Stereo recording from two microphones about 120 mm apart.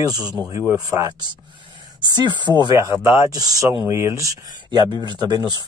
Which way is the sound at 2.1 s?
40° right (ahead or behind).